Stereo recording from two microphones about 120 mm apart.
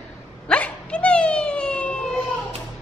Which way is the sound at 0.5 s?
10° left (ahead or behind).